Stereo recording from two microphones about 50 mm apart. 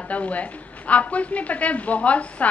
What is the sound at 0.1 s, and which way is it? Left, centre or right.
A woman's voice, left.